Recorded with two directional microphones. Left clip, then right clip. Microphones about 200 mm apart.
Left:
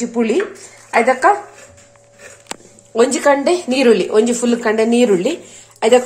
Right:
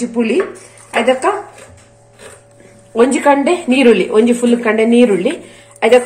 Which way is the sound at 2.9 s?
25° left (ahead or behind).